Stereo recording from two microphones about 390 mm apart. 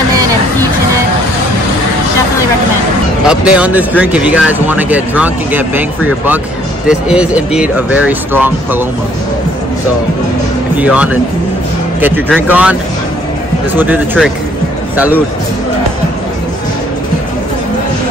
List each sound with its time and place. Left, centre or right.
3.3 s speech: centre
10.8 s speech: centre
13.7 s speech: centre